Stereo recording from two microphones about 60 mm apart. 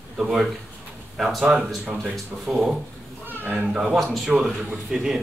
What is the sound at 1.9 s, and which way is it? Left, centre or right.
Speech, centre.